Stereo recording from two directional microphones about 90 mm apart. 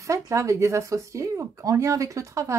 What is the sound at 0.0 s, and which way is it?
Speech, 35° right (ahead or behind).